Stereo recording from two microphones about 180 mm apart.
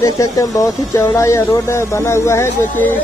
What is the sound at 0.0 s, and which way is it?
Speech, 20° left (ahead or behind).